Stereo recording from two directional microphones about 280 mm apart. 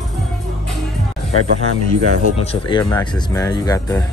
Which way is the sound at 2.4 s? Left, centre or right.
Centre.